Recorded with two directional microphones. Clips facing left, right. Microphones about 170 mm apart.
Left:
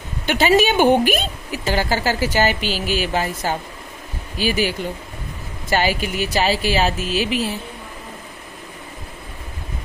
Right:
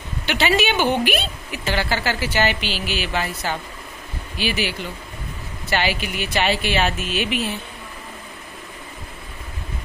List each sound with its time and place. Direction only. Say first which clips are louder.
0.3 s a woman's voice: left 4 dB; 45° left (ahead or behind)